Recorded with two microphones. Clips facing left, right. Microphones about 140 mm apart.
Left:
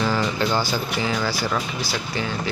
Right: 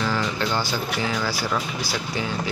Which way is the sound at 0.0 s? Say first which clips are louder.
Left 3 dB; 10° left (ahead or behind).